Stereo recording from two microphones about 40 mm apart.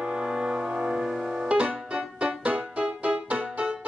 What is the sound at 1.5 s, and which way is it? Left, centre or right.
Music, right.